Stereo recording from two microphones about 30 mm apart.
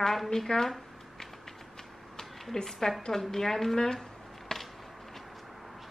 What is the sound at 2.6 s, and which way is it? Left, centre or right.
A woman's voice, centre.